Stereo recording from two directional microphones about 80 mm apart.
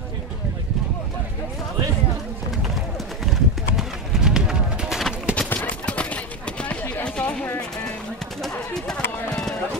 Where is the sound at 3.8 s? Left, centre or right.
Centre.